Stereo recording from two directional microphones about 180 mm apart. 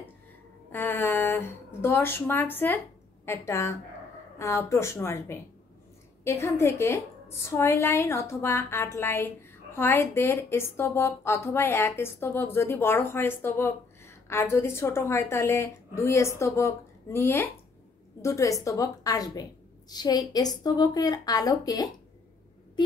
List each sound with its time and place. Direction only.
0.7 s a woman's voice: 10° left (ahead or behind)